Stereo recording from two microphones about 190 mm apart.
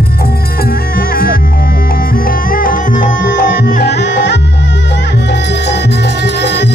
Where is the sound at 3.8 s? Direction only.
65° left (ahead or behind).